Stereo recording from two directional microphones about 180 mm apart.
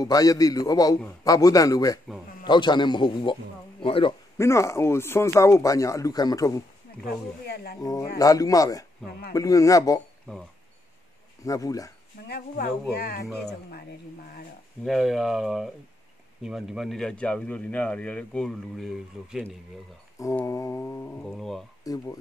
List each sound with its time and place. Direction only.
0.0 s a man's voice: 20° left (ahead or behind)
4.4 s speech: 15° left (ahead or behind)
7.4 s speech: 60° left (ahead or behind)
7.8 s a man's voice: 20° left (ahead or behind)
11.4 s a man's voice: 20° left (ahead or behind)
12.3 s speech: 60° left (ahead or behind)
14.9 s speech: centre (ahead or behind)
20.2 s speech: 15° left (ahead or behind); by 21.6 s centre (ahead or behind)
21.8 s a man's voice: 20° left (ahead or behind)